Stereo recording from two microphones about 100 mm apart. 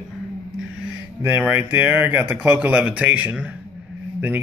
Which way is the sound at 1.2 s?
15° right (ahead or behind).